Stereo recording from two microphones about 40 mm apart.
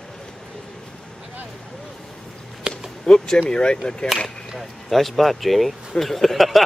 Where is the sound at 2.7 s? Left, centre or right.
Right.